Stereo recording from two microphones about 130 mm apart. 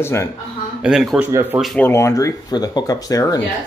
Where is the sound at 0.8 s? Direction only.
Centre (ahead or behind).